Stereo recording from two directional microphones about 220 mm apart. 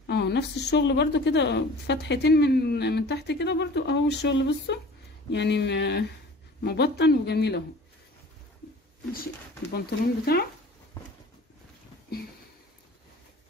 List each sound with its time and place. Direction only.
0.0 s a woman's voice: 50° left (ahead or behind)
9.1 s a woman's voice: 45° left (ahead or behind)